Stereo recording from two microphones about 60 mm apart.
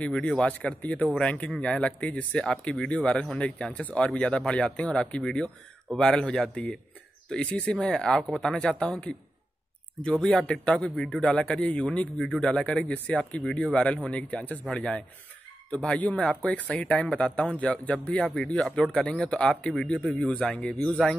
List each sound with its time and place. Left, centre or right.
0.0 s a man's voice: centre
14.2 s a man's voice: left